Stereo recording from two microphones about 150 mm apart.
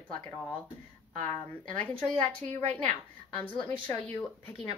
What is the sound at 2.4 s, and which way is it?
Speech, 50° right (ahead or behind).